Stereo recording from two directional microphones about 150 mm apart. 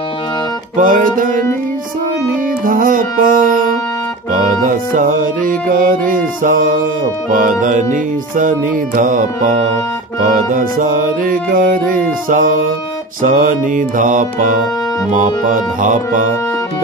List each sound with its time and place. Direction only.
0.7 s music: 60° right (ahead or behind)
2.6 s music: 65° right (ahead or behind)
4.6 s music: 65° right (ahead or behind)
10.5 s music: 65° right (ahead or behind)